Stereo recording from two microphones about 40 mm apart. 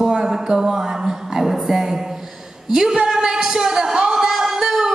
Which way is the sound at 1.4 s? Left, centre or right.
Centre.